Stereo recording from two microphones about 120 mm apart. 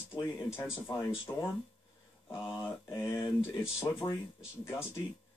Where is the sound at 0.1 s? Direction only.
25° left (ahead or behind).